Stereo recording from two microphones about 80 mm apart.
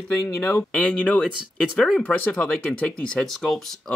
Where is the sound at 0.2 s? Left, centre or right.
Left.